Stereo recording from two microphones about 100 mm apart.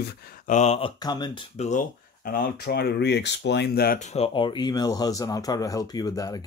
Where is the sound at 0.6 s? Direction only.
90° left.